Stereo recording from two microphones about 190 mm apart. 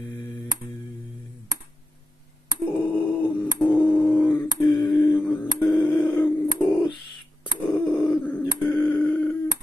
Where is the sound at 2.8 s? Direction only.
5° left (ahead or behind).